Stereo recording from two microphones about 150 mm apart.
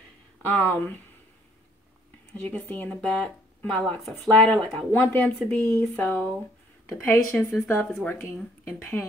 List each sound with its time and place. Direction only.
0.5 s speech: 15° left (ahead or behind)
2.4 s speech: 10° left (ahead or behind)